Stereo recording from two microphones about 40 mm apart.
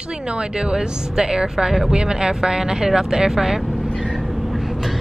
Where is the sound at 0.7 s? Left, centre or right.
Centre.